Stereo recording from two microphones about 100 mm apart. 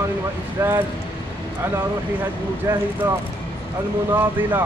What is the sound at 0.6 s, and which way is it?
Speech, 25° right (ahead or behind).